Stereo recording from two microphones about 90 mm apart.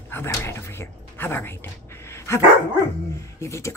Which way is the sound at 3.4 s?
35° left (ahead or behind).